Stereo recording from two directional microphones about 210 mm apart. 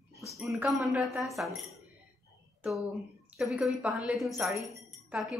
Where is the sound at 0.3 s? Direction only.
5° right (ahead or behind).